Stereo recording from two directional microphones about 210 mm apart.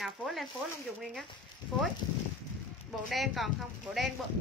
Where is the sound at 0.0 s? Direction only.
Centre (ahead or behind).